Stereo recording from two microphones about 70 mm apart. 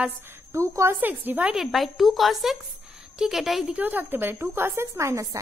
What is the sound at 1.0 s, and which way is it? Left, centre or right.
Speech, right.